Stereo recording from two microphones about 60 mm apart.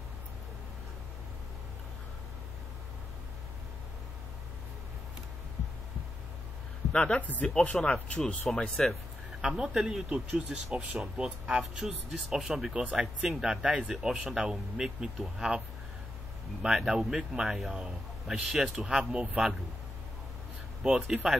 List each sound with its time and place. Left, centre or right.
6.9 s speech: centre
9.4 s speech: centre
16.6 s speech: centre
20.8 s speech: centre